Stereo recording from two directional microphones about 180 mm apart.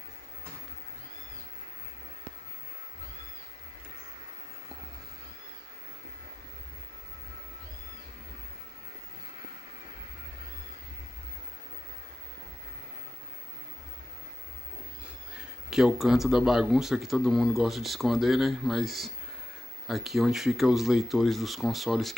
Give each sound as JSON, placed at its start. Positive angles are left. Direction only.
{"t": 15.3, "sound": "speech", "side_deg": -5}